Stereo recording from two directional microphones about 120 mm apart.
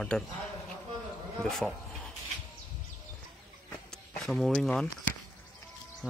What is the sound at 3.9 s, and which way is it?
Speech, centre (ahead or behind).